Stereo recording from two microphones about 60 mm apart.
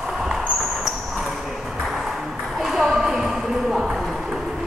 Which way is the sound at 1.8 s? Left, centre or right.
Centre.